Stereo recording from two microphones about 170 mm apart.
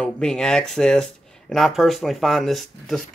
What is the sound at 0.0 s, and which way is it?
Speech, 5° left (ahead or behind).